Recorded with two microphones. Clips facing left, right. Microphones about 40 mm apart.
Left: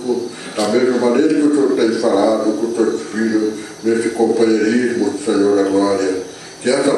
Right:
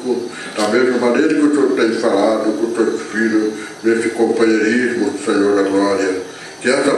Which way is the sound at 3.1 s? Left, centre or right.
Right.